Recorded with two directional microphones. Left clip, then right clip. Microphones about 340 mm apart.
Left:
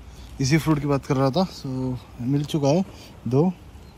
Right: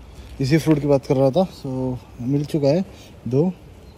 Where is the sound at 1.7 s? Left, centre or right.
Centre.